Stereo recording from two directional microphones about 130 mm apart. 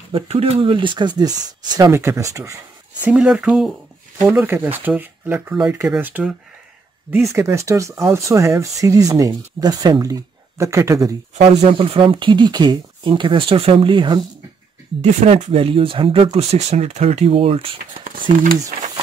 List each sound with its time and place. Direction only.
0.1 s speech: 45° right (ahead or behind); by 2.6 s 25° right (ahead or behind)
3.1 s speech: 10° right (ahead or behind)
7.3 s speech: 20° right (ahead or behind)
11.4 s speech: 45° right (ahead or behind)
15.0 s speech: 60° right (ahead or behind)